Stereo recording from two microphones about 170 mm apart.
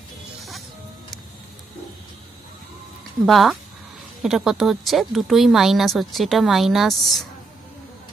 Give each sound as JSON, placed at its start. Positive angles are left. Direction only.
{"t": 3.3, "sound": "speech", "side_deg": 0}